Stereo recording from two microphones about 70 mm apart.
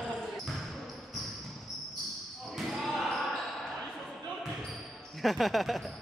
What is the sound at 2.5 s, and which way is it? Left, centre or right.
Basketball bounce, centre.